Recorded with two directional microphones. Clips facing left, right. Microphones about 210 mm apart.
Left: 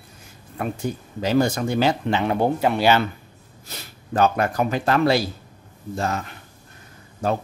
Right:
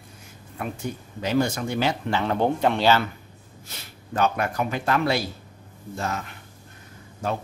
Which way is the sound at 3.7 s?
35° left (ahead or behind).